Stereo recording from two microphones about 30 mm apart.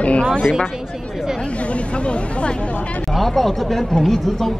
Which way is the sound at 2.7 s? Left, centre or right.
Left.